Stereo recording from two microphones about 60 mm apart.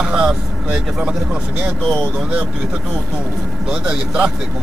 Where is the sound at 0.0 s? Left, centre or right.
Centre.